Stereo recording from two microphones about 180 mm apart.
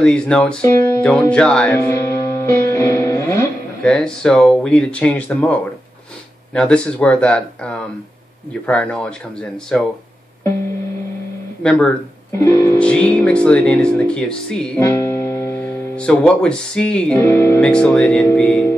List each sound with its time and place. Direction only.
0.0 s speech: 5° left (ahead or behind)
3.8 s speech: 5° left (ahead or behind)
11.6 s speech: 5° left (ahead or behind)
12.4 s speech: 15° left (ahead or behind)
14.8 s speech: 15° left (ahead or behind)